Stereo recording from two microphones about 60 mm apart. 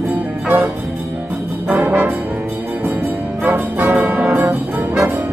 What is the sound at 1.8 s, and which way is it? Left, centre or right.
Brass instrument, right.